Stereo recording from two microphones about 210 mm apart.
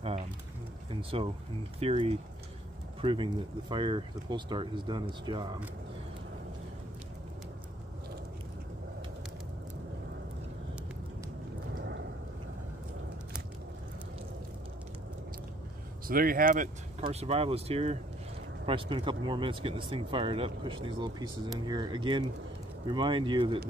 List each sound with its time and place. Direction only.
1.1 s speech: 25° right (ahead or behind)
16.1 s speech: 45° right (ahead or behind)
17.0 s speech: 30° right (ahead or behind)